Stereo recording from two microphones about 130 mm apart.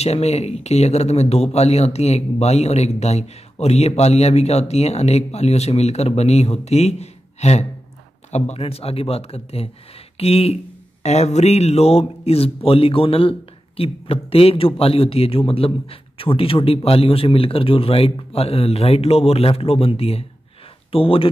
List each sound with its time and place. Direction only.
0.0 s a man's voice: 55° left (ahead or behind)